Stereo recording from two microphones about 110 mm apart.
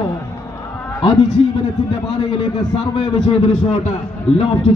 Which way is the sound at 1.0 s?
50° left (ahead or behind).